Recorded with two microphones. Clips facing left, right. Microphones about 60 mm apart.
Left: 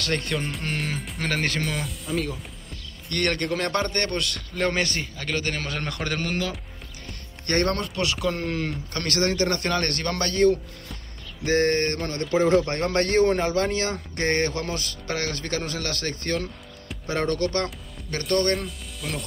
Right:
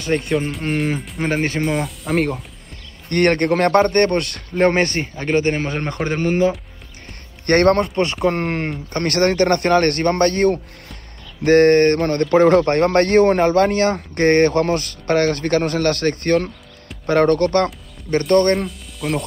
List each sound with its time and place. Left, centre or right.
0.0 s speech: centre
2.0 s speech: right
3.1 s speech: right
7.4 s speech: right
8.2 s speech: right
18.7 s speech: centre